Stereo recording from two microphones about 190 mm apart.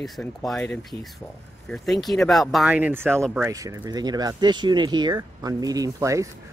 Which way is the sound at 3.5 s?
20° right (ahead or behind).